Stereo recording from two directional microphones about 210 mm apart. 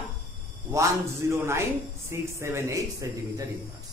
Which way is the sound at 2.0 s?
10° right (ahead or behind).